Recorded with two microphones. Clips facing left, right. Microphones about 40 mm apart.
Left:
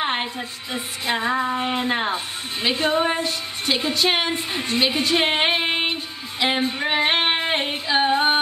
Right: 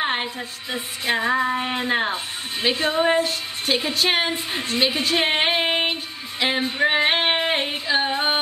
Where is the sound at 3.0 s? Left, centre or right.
Centre.